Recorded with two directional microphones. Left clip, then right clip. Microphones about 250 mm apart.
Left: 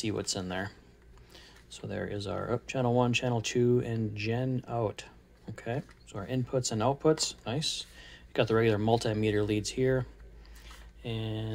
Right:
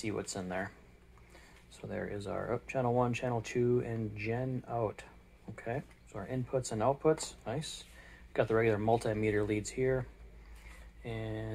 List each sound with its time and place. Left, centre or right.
0.1 s speech: left
1.8 s speech: left
3.5 s speech: left
11.1 s speech: left